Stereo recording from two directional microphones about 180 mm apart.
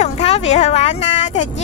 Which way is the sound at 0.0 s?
40° left (ahead or behind).